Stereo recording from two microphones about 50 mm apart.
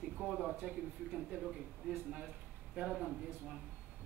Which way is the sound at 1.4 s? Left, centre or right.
Centre.